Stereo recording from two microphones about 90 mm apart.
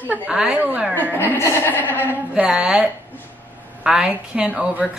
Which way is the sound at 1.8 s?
25° left (ahead or behind).